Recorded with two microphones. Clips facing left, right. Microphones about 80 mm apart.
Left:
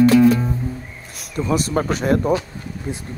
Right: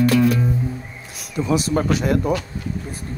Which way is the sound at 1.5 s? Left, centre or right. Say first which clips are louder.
Right 1 dB; left.